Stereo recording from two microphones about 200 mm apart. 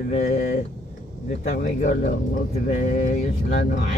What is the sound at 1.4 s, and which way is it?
Speech, 40° left (ahead or behind).